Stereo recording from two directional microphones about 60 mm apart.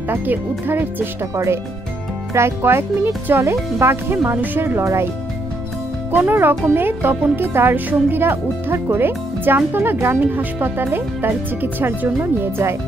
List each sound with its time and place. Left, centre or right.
0.1 s speech: right
1.3 s speech: right
6.1 s speech: right